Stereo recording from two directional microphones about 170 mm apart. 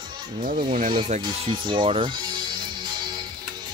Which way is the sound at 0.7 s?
50° right (ahead or behind).